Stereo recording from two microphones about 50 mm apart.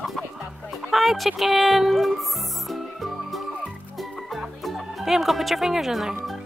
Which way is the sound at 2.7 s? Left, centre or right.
Centre.